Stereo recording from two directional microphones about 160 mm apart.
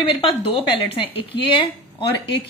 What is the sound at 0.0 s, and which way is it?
Speech, 35° left (ahead or behind).